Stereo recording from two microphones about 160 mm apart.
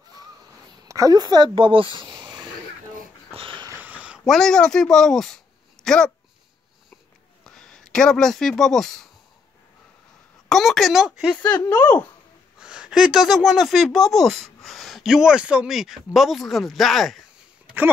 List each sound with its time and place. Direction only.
0.8 s speech: 20° right (ahead or behind)
3.3 s dog: 30° right (ahead or behind)
3.7 s a sound: 10° right (ahead or behind)
7.4 s speech: 5° left (ahead or behind)
10.5 s speech: centre (ahead or behind)
11.4 s speech: 20° left (ahead or behind)
12.5 s speech: 5° right (ahead or behind)